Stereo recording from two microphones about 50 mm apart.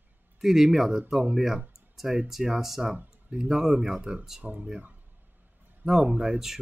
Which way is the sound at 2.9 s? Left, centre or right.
Right.